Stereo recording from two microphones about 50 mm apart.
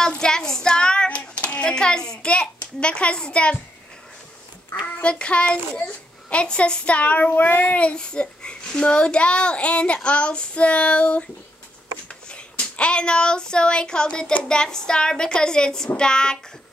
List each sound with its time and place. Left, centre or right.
0.1 s a child's voice: centre
4.8 s a child's voice: left
7.2 s child singing: left
7.8 s a child's voice: centre
12.1 s a sound: left
14.5 s a woman's voice: centre